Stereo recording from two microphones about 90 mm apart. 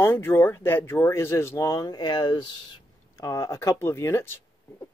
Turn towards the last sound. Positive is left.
turn(degrees=30)  # may be behind; listen again after turning